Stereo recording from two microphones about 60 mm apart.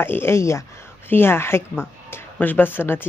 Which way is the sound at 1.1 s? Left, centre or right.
Left.